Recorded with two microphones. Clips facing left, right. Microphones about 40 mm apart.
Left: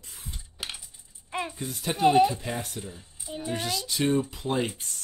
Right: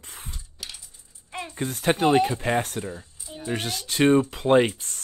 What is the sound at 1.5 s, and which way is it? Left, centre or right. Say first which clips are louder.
Speech: right 8 dB; right.